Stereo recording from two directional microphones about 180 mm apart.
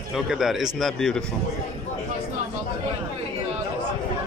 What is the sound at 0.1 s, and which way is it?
Speech, centre (ahead or behind).